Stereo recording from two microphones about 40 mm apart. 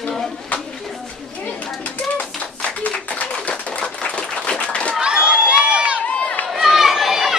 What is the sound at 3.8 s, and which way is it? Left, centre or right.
Applause, left.